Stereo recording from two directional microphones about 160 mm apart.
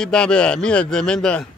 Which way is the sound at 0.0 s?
5° left (ahead or behind).